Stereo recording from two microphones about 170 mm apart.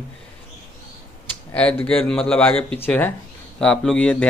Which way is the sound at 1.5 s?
5° left (ahead or behind).